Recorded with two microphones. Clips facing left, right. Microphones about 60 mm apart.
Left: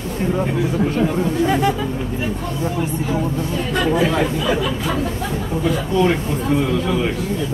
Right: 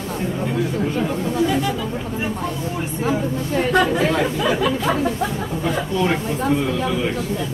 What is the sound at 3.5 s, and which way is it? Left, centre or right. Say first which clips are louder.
Speech: right 4 dB; right.